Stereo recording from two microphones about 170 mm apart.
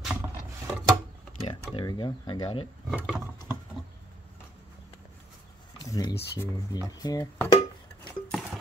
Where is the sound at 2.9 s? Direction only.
5° right (ahead or behind).